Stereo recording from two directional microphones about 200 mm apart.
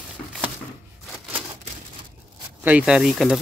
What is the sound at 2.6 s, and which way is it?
Speech, 5° right (ahead or behind).